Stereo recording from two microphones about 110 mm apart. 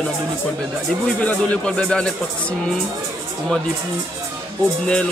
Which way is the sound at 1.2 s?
10° left (ahead or behind).